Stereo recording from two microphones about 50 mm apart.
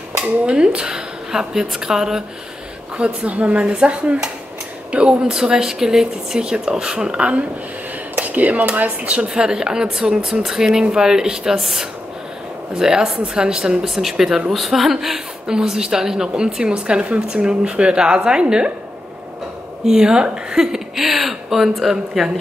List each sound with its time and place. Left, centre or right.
0.5 s a woman's voice: centre
3.0 s speech: right
5.3 s a woman's voice: centre
9.3 s a woman's voice: centre
19.9 s a woman's voice: centre